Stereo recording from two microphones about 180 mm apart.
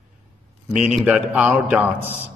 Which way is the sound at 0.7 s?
5° right (ahead or behind).